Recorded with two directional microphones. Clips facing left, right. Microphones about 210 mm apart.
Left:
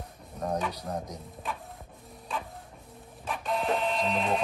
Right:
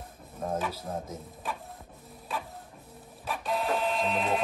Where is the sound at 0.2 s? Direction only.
Centre (ahead or behind).